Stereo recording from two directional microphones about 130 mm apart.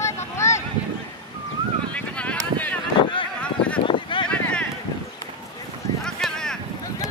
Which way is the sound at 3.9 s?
40° left (ahead or behind).